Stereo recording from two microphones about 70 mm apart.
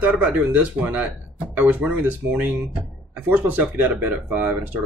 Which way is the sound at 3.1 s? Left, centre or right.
Right.